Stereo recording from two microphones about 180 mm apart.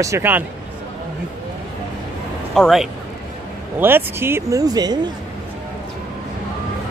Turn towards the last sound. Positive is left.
turn(degrees=-20)  # may be behind; listen again after turning